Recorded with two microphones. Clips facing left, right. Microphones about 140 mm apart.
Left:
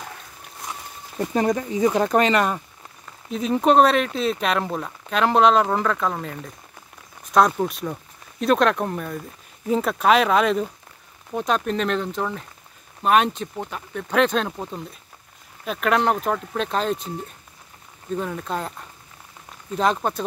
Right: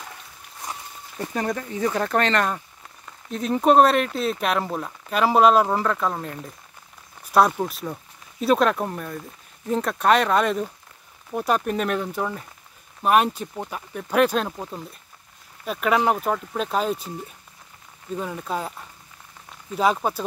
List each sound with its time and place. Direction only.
1.1 s speech: 20° left (ahead or behind); by 17.1 s 5° right (ahead or behind)
18.1 s speech: 5° right (ahead or behind)
19.7 s speech: 5° right (ahead or behind)